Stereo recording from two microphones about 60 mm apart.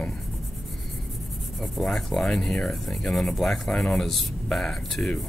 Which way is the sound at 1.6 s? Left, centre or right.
Centre.